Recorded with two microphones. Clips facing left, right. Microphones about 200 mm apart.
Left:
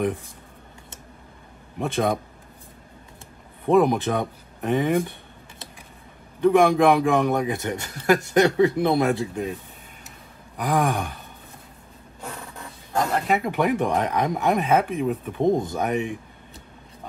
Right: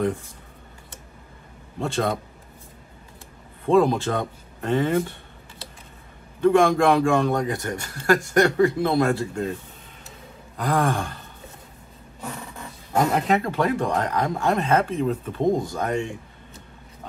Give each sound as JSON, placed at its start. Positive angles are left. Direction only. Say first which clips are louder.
{"t": 1.8, "sound": "a man's voice", "louder": "left 1 dB", "side_deg": 15}
{"t": 3.6, "sound": "speech", "louder": "even", "side_deg": 15}
{"t": 6.4, "sound": "a man's voice", "louder": "left 1 dB", "side_deg": 15}
{"t": 10.6, "sound": "a man's voice", "louder": "even", "side_deg": 15}
{"t": 13.3, "sound": "a man's voice", "louder": "even", "side_deg": 15}